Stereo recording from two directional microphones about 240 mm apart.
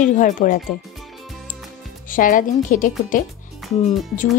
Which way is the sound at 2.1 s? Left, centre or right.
Left.